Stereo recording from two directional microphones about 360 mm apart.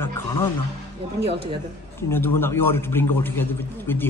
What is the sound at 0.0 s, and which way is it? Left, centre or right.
Music, centre.